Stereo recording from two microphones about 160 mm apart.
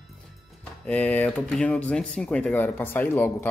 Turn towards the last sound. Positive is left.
turn(degrees=10)  # may be behind; listen again after turning